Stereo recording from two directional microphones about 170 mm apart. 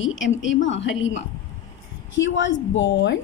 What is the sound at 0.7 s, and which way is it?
A woman's voice, 90° left.